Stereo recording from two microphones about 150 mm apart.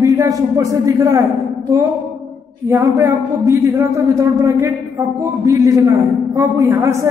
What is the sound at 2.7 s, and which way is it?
Speech, 20° right (ahead or behind).